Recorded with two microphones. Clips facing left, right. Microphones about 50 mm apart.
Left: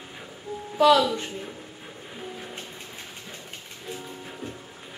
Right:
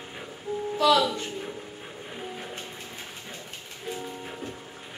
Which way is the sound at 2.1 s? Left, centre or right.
Centre.